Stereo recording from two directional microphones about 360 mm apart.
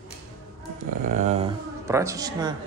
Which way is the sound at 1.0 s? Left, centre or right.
Centre.